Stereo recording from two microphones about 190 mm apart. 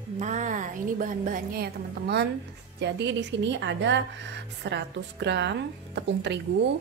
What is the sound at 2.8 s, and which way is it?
A woman's voice, 65° right (ahead or behind).